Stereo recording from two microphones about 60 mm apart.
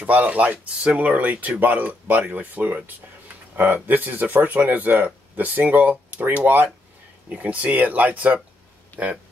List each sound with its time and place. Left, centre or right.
0.0 s speech: right